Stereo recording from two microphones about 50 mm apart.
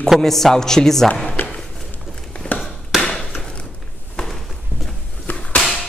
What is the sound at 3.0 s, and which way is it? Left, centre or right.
Wood, centre.